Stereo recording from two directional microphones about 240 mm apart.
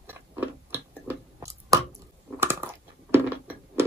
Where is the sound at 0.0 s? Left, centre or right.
Centre.